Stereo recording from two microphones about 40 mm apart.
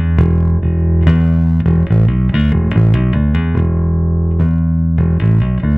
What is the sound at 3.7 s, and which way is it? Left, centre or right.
Music, centre.